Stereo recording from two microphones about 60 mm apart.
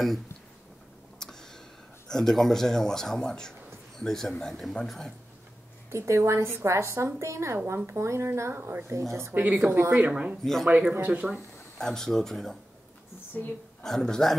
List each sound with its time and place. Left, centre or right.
1.2 s a sound: centre
2.0 s a man's voice: centre
5.9 s a woman's voice: right
9.7 s a woman's voice: right
9.9 s speech: right
10.4 s speech: centre
10.7 s speech: right
11.8 s a man's voice: centre
13.4 s a woman's voice: left
13.8 s a man's voice: centre